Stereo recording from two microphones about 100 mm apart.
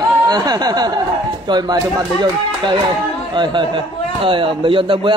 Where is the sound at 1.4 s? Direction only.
45° right (ahead or behind).